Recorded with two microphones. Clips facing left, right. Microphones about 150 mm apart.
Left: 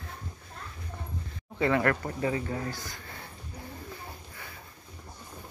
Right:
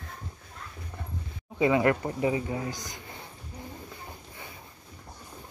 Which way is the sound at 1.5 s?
15° right (ahead or behind).